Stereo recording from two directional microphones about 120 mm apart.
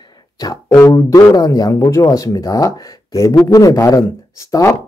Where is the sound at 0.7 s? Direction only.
30° left (ahead or behind).